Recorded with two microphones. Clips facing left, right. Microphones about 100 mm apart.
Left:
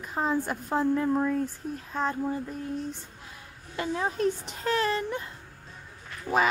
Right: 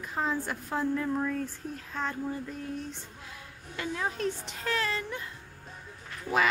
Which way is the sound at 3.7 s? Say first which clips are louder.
Left 4 dB; 25° left (ahead or behind).